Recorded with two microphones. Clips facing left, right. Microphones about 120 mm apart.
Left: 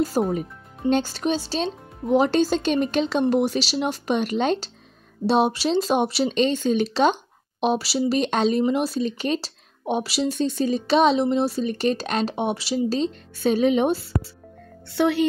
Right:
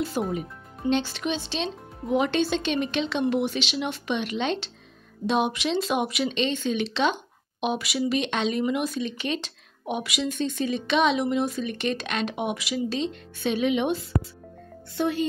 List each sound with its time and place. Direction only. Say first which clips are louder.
0.3 s speech: left 4 dB; 40° left (ahead or behind)
14.9 s speech: left 5 dB; 80° left